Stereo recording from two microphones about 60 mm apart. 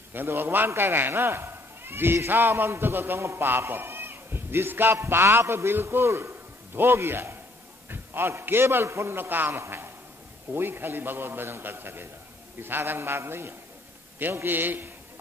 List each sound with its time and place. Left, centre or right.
0.1 s a man's voice: right
3.2 s music: right
3.4 s a man's voice: right